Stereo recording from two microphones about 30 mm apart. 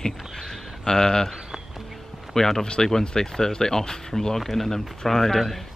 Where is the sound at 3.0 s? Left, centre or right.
Left.